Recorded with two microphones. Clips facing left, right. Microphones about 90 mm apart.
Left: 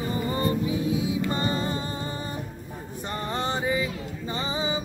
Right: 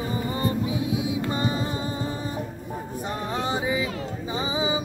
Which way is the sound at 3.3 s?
5° right (ahead or behind).